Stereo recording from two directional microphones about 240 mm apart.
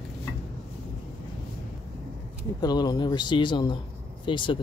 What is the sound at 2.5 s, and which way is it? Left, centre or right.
Speech, centre.